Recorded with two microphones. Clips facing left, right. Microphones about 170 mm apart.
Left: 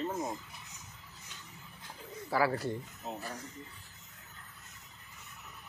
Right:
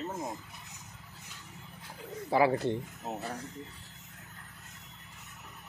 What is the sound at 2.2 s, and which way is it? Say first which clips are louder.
Speech: right 4 dB; 20° right (ahead or behind).